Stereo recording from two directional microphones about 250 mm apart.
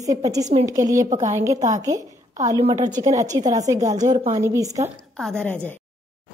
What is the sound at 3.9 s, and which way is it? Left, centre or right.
Speech, right.